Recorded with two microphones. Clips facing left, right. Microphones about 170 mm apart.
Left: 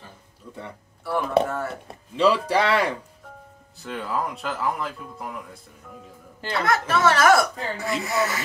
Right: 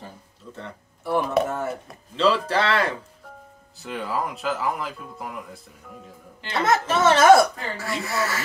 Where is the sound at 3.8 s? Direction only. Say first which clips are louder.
Even; centre (ahead or behind).